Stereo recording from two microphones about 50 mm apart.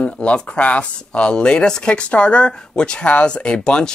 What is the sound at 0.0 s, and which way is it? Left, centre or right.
Speech, left.